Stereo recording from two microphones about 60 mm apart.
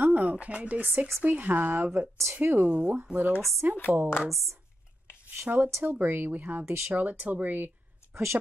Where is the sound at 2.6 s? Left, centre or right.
Centre.